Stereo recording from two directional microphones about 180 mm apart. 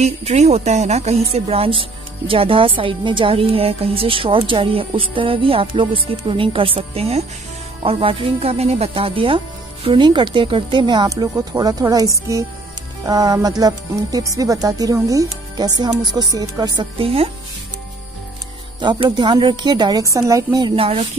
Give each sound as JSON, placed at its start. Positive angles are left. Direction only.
{"t": 0.0, "sound": "speech", "side_deg": -35}
{"t": 18.8, "sound": "speech", "side_deg": -25}
{"t": 20.7, "sound": "speech", "side_deg": -30}